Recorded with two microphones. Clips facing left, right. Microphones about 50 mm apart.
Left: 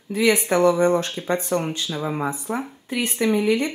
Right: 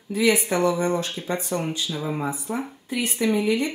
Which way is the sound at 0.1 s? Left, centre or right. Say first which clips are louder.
Left 2 dB; centre.